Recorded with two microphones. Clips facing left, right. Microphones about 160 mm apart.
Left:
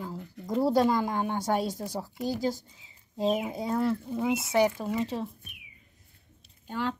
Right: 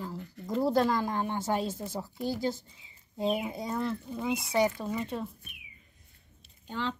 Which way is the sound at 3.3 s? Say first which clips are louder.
Left 4 dB; 5° left (ahead or behind).